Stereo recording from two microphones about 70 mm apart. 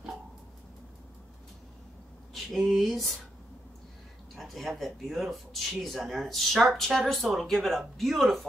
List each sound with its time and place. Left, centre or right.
2.3 s speech: centre
4.4 s speech: centre